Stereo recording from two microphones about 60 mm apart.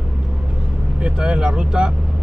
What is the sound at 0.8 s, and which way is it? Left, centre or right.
Vehicle, centre.